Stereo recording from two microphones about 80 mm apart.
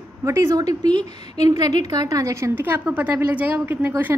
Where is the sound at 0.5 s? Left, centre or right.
Right.